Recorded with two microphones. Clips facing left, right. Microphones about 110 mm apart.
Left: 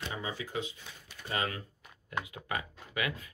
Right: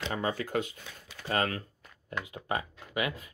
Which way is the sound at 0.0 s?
55° right (ahead or behind).